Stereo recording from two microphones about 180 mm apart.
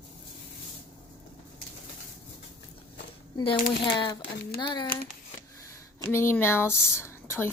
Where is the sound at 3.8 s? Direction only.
25° left (ahead or behind).